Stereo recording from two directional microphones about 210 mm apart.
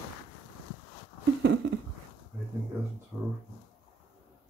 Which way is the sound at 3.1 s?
Centre (ahead or behind).